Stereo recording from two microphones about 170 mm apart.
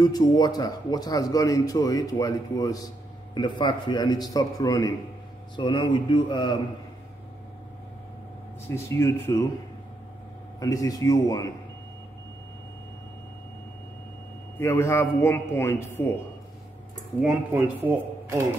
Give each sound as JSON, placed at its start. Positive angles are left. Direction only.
{"t": 0.0, "sound": "a man's voice", "side_deg": 25}
{"t": 8.6, "sound": "a man's voice", "side_deg": 15}
{"t": 10.6, "sound": "a man's voice", "side_deg": 20}
{"t": 14.6, "sound": "a man's voice", "side_deg": 15}
{"t": 17.6, "sound": "speech", "side_deg": -15}